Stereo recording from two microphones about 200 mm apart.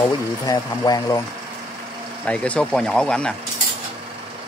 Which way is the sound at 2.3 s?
5° left (ahead or behind).